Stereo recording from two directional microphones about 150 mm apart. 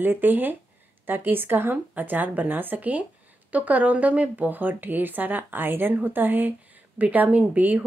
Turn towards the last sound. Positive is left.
turn(degrees=-10)  # may be behind; listen again after turning